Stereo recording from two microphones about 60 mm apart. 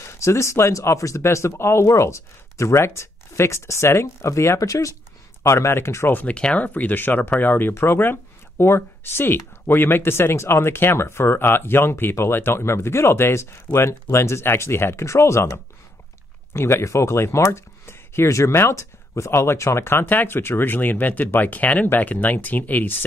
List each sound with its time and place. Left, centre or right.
0.1 s speech: left
4.6 s speech: left
5.4 s speech: left
6.2 s speech: centre